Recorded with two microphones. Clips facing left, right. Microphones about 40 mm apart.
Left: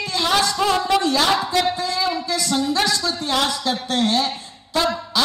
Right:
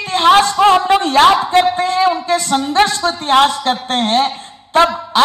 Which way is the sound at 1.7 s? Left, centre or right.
Right.